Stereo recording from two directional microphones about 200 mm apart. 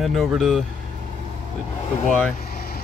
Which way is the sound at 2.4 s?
50° left (ahead or behind).